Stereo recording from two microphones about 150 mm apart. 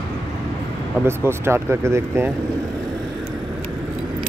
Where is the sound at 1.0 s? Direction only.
15° right (ahead or behind).